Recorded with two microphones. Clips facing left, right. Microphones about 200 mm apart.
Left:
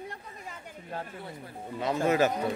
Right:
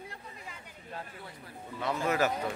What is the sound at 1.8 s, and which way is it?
Speech, 20° left (ahead or behind).